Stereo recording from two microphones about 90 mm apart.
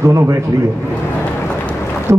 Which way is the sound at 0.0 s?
35° right (ahead or behind).